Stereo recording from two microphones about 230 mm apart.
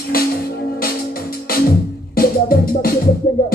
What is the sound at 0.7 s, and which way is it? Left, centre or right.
Music, left.